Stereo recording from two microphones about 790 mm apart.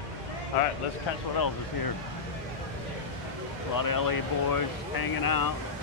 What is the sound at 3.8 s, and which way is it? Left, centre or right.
Speech, left.